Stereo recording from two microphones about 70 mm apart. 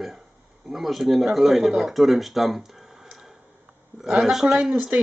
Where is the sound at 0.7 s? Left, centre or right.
Centre.